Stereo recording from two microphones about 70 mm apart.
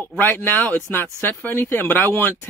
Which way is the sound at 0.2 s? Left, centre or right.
Left.